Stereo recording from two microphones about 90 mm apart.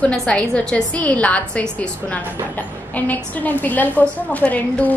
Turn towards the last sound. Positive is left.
turn(degrees=15)  # may be behind; listen again after turning